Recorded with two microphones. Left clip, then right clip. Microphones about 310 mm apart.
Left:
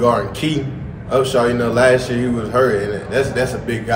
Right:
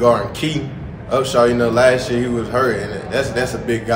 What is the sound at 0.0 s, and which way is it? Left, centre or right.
A man's voice, centre.